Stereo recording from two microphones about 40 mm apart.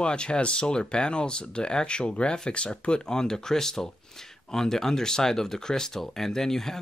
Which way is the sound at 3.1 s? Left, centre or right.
Centre.